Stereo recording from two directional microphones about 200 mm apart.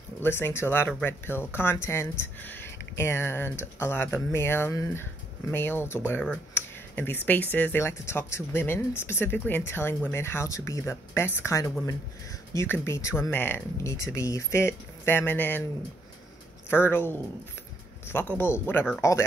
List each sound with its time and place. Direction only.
0.2 s speech: 10° left (ahead or behind)
6.5 s a sound: 10° left (ahead or behind)
7.5 s speech: 10° left (ahead or behind)
16.6 s speech: 10° left (ahead or behind)